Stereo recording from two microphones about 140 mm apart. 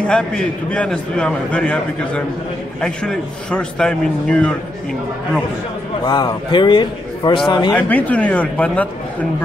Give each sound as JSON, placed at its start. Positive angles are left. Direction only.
{"t": 0.0, "sound": "a man's voice", "side_deg": 5}
{"t": 6.0, "sound": "a man's voice", "side_deg": 30}
{"t": 7.7, "sound": "a man's voice", "side_deg": 10}